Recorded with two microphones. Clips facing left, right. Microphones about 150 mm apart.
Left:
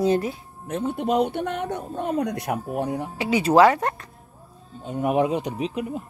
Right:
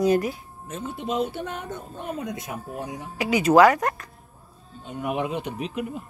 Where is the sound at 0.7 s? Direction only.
60° left (ahead or behind).